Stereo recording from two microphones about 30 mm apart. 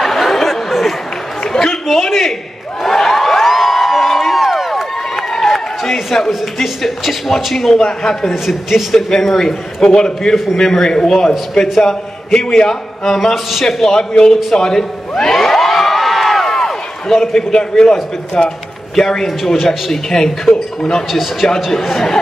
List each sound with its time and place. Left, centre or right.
0.0 s chatter: centre
1.5 s a sound: centre
6.1 s a man's voice: centre
7.7 s a man's voice: centre
8.5 s a man's voice: centre
8.9 s a man's voice: centre
15.3 s crowd: centre
16.4 s a sound: centre
18.4 s a man's voice: left
19.2 s a man's voice: centre
19.9 s a man's voice: centre
21.1 s a man's voice: centre